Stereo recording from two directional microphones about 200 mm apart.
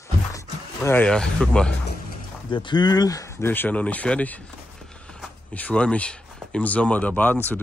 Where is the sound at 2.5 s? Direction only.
25° left (ahead or behind).